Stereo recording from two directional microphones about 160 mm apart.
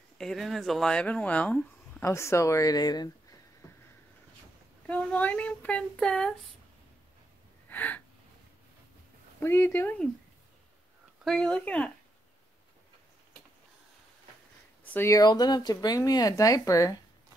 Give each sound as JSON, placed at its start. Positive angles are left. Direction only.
{"t": 0.2, "sound": "speech", "side_deg": 0}
{"t": 4.8, "sound": "speech", "side_deg": 10}
{"t": 7.7, "sound": "gasp", "side_deg": 10}
{"t": 9.4, "sound": "speech", "side_deg": 15}
{"t": 11.2, "sound": "speech", "side_deg": 5}
{"t": 14.9, "sound": "speech", "side_deg": 15}